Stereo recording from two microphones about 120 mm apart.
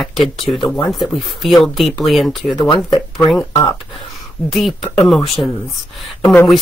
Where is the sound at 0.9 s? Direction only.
Centre (ahead or behind).